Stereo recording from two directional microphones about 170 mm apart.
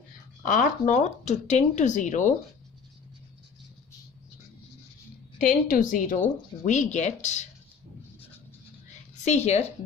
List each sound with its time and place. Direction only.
0.5 s speech: 50° left (ahead or behind)
5.4 s speech: 50° left (ahead or behind)
9.2 s a woman's voice: 40° left (ahead or behind)